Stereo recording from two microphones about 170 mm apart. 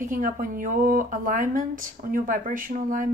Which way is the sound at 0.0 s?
55° right (ahead or behind).